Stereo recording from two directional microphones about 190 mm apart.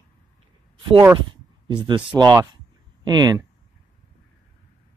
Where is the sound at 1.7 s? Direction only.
25° right (ahead or behind).